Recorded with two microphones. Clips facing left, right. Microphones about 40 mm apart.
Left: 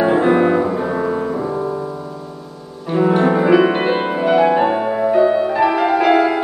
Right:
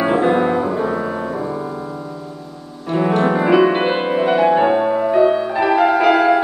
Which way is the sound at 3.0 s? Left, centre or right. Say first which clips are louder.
Left 2 dB; centre.